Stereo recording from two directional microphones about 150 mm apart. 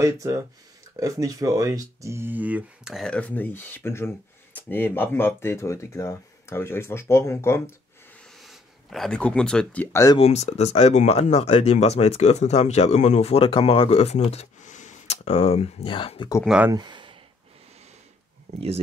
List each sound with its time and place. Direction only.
0.0 s speech: 20° right (ahead or behind); by 7.7 s 15° left (ahead or behind)
8.4 s speech: centre (ahead or behind)
10.1 s speech: 45° left (ahead or behind)
16.4 s speech: 10° right (ahead or behind)
16.7 s a sound: 30° right (ahead or behind)